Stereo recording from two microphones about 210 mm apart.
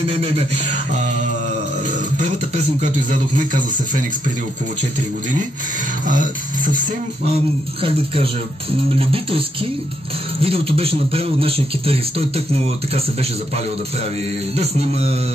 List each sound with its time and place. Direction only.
2.1 s speech: 35° right (ahead or behind)
6.0 s speech: 40° right (ahead or behind)
7.8 s a man's voice: 25° right (ahead or behind)
10.4 s a man's voice: 25° right (ahead or behind)
14.6 s a man's voice: 30° right (ahead or behind)